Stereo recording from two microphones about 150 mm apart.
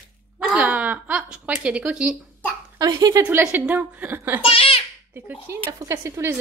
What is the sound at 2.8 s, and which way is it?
Speech, 25° right (ahead or behind).